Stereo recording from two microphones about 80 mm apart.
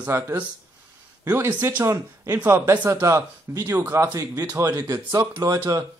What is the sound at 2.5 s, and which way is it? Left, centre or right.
Speech, right.